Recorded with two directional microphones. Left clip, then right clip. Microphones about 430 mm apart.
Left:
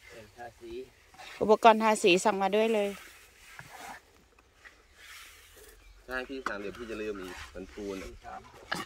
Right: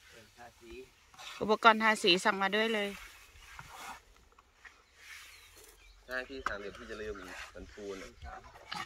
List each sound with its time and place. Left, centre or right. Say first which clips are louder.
1.1 s a sound: even; right
1.5 s speech: left 4 dB; centre
6.0 s speech: left 2 dB; centre